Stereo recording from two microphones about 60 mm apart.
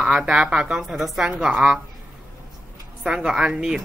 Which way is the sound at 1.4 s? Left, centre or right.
Centre.